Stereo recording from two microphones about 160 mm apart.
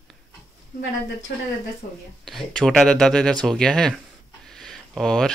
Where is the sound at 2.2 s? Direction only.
Centre (ahead or behind).